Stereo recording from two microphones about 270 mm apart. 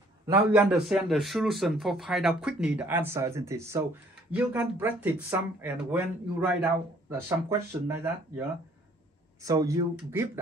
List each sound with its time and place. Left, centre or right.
0.6 s speech: centre
9.4 s speech: centre